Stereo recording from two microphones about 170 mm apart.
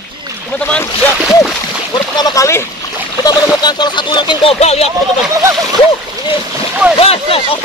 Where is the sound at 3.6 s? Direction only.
25° left (ahead or behind).